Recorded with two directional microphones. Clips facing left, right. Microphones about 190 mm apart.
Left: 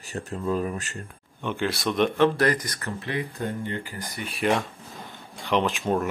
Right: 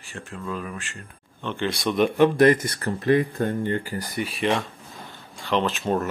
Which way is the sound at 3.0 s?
50° right (ahead or behind).